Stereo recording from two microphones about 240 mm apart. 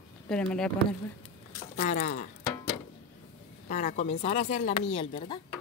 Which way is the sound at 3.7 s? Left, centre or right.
Left.